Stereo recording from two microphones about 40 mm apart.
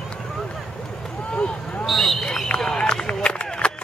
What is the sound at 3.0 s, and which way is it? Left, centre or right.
Run, left.